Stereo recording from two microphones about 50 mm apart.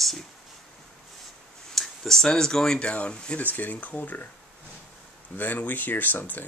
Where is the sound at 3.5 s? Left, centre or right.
Left.